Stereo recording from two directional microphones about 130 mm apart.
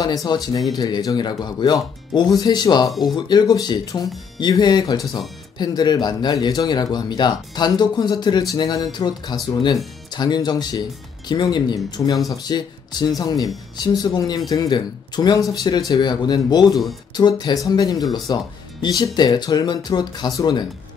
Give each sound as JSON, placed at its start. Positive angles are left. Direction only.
{"t": 0.0, "sound": "speech", "side_deg": 30}